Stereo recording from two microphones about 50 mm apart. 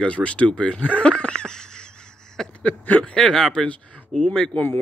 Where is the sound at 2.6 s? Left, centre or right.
Left.